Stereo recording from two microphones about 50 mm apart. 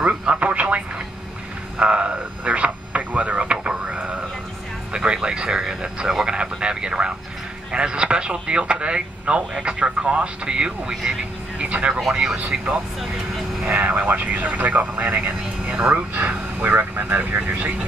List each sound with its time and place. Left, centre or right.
0.0 s speech: right
1.8 s radio: right
4.9 s speech: centre
12.0 s speech: centre
12.4 s speech: right